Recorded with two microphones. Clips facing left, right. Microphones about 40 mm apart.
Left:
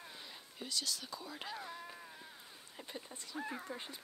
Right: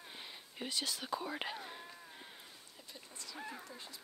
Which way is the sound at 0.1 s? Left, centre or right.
Right.